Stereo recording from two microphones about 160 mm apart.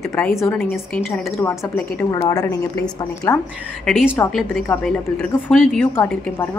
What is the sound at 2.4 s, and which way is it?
Speech, 15° left (ahead or behind).